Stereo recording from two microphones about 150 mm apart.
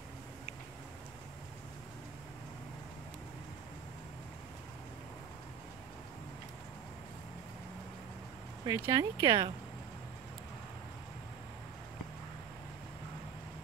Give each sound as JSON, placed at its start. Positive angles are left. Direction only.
{"t": 8.6, "sound": "speech", "side_deg": -25}